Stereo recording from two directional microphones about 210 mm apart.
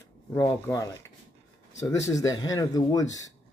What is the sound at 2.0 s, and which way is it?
Speech, 15° left (ahead or behind).